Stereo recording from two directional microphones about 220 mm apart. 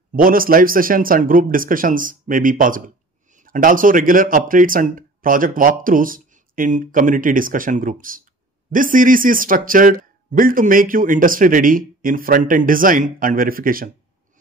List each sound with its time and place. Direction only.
0.1 s a man's voice: 40° right (ahead or behind)